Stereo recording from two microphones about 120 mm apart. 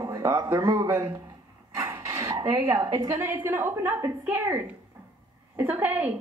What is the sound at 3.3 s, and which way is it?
A woman's voice, 20° right (ahead or behind).